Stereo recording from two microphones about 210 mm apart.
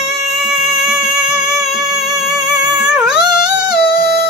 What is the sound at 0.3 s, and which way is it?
Music, centre (ahead or behind).